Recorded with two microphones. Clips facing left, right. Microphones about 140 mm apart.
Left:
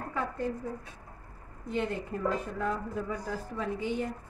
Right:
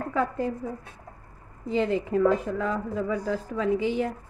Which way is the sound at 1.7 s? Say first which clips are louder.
Right 8 dB; 90° right.